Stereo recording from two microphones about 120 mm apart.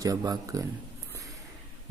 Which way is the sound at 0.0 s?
30° right (ahead or behind).